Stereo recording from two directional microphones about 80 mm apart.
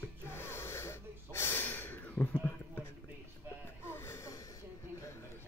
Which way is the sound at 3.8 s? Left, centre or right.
Left.